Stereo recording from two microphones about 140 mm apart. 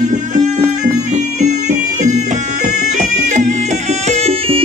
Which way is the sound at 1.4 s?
55° right (ahead or behind).